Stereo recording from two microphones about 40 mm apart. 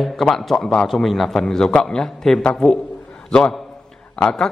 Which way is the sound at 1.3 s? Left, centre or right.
Centre.